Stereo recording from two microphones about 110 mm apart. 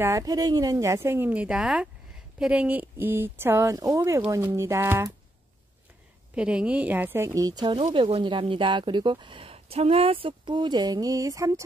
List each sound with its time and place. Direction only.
0.0 s speech: 30° right (ahead or behind)
3.7 s speech: 30° right (ahead or behind)
6.3 s a woman's voice: 10° right (ahead or behind); by 7.6 s 35° right (ahead or behind)
7.6 s speech: 50° right (ahead or behind); by 11.6 s 30° right (ahead or behind)